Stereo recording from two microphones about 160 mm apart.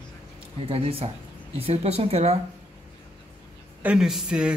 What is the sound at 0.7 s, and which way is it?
Speech, 35° right (ahead or behind).